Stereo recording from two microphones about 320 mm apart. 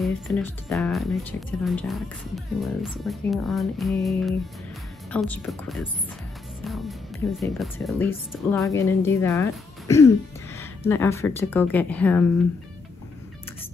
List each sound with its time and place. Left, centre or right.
0.0 s a woman's voice: centre